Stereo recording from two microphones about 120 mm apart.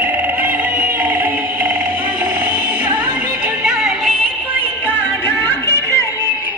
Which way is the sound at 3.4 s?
5° right (ahead or behind).